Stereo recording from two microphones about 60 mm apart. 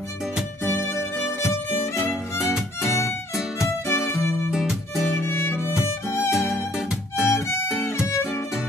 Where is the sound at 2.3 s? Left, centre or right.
Centre.